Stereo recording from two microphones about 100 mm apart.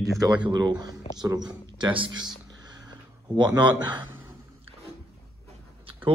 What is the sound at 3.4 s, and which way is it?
Speech, 45° right (ahead or behind).